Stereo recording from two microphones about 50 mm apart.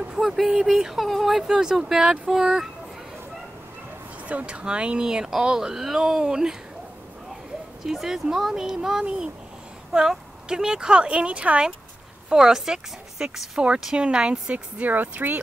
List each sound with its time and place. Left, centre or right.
0.4 s speech: centre
4.3 s speech: right; by 6.5 s centre
7.8 s speech: centre
12.3 s speech: centre
14.5 s speech: right